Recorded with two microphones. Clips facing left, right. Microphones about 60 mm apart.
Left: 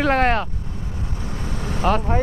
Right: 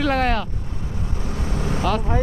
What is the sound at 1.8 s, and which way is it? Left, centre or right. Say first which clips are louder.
Speech: left 4 dB; left.